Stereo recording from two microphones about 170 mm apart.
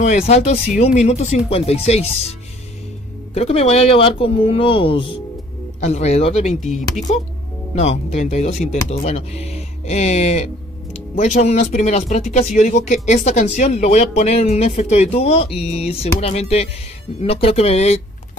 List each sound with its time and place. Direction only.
0.0 s speech: 45° left (ahead or behind)
3.3 s speech: 40° left (ahead or behind)